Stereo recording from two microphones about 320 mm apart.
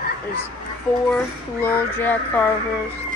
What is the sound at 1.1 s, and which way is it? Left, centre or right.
A child's voice, centre.